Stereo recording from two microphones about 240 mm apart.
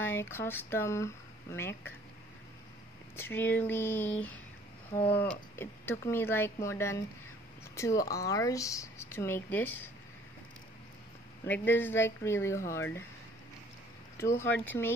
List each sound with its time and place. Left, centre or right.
0.0 s speech: centre
3.2 s speech: centre
11.4 s speech: centre
14.1 s speech: centre